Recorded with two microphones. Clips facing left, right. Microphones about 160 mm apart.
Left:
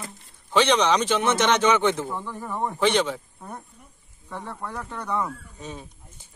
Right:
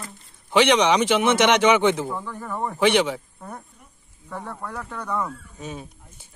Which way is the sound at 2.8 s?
15° right (ahead or behind).